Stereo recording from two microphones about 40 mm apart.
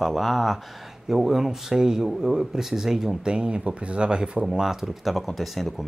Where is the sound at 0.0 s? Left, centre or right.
Centre.